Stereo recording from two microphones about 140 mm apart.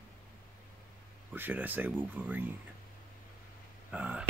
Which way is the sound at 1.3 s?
15° right (ahead or behind).